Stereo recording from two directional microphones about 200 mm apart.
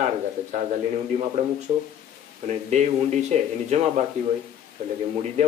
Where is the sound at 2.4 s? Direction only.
35° right (ahead or behind).